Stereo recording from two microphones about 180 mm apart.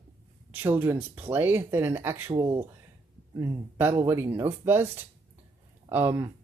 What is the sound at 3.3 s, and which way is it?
Speech, 15° right (ahead or behind).